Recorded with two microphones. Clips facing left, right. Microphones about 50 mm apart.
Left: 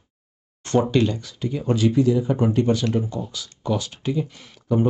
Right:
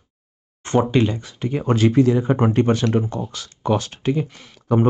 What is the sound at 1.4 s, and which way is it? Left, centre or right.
Speech, right.